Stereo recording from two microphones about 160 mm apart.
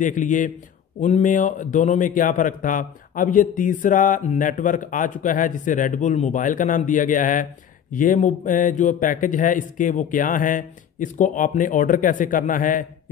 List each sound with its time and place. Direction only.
0.0 s a man's voice: 55° left (ahead or behind)